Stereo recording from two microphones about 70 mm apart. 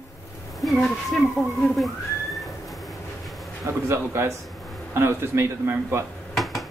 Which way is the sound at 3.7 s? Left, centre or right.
Right.